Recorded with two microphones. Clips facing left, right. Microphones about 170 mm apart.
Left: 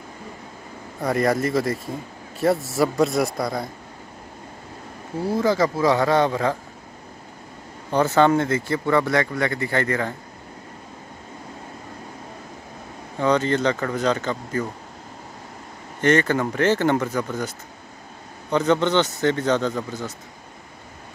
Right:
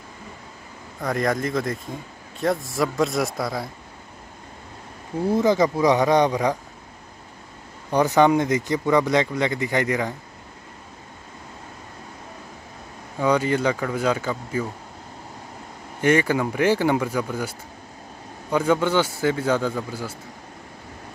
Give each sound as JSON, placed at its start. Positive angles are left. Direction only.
{"t": 1.0, "sound": "speech", "side_deg": 5}
{"t": 5.2, "sound": "speech", "side_deg": -20}
{"t": 7.9, "sound": "speech", "side_deg": -15}
{"t": 13.2, "sound": "speech", "side_deg": -10}
{"t": 16.0, "sound": "speech", "side_deg": -10}